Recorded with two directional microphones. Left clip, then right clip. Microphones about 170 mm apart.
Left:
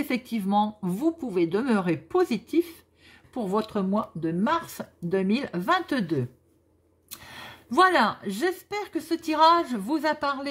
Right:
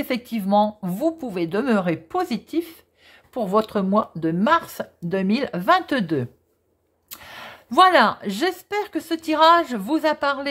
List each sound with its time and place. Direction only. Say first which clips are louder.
0.0 s speech: right 3 dB; 25° right (ahead or behind)
3.4 s speech: right 6 dB; 45° right (ahead or behind); by 10.5 s 25° right (ahead or behind)